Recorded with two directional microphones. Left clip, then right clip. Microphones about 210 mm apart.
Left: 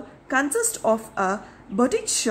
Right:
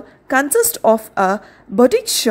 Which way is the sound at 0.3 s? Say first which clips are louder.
Right 8 dB; 35° right (ahead or behind).